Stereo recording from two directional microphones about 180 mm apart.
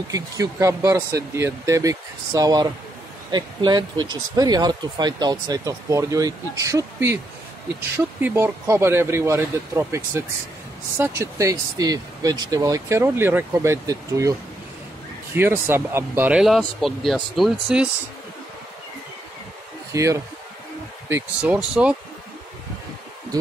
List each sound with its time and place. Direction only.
0.1 s speech: 20° right (ahead or behind)
8.2 s speech: 10° right (ahead or behind)
15.3 s speech: 10° right (ahead or behind)
19.9 s speech: 15° right (ahead or behind)